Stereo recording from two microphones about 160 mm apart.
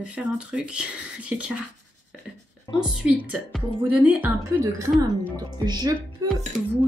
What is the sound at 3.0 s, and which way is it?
Speech, 10° right (ahead or behind).